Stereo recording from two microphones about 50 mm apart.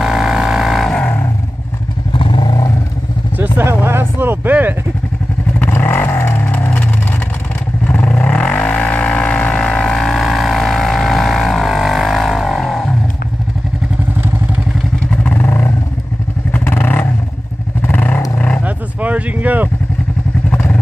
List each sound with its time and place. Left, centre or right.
0.0 s vehicle: centre
3.6 s vehicle: right
4.5 s vehicle: right
5.6 s vehicle: left
7.8 s vehicle: left
9.6 s vehicle: left
9.9 s vehicle: centre
15.3 s vehicle: left
18.6 s vehicle: right